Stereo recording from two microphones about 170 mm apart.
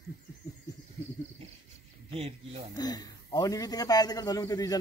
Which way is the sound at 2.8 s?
20° left (ahead or behind).